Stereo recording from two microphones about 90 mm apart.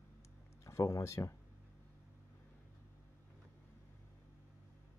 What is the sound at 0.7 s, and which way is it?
Speech, 35° left (ahead or behind).